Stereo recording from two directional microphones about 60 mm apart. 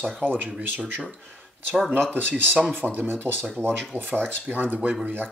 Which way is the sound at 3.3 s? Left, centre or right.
Right.